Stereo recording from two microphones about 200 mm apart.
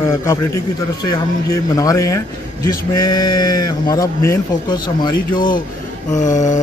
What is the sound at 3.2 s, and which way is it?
A man's voice, 20° left (ahead or behind).